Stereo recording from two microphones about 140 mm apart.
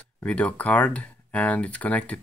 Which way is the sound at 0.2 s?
10° left (ahead or behind).